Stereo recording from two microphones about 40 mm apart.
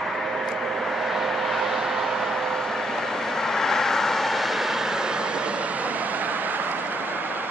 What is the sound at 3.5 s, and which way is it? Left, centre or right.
Vehicle, centre.